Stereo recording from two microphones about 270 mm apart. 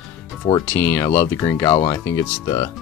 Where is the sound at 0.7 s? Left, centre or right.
Centre.